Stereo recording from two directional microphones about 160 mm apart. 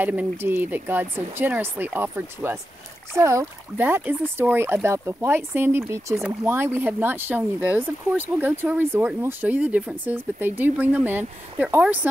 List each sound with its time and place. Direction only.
0.0 s speech: 10° right (ahead or behind)